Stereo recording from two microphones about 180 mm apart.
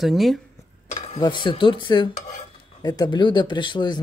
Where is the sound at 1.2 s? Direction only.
25° left (ahead or behind).